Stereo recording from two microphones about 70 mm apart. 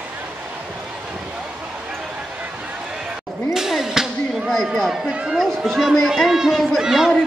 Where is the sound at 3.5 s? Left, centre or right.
Centre.